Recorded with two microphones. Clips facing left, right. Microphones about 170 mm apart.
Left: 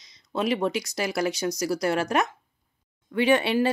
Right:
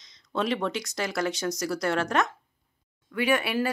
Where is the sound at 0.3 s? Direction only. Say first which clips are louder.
Left 3 dB; 10° left (ahead or behind).